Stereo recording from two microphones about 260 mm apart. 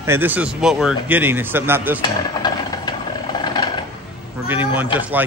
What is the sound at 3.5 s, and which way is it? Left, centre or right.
Music, centre.